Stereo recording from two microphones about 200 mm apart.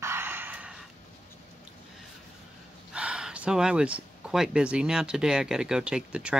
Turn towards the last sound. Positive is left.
turn(degrees=-5)  # may be behind; listen again after turning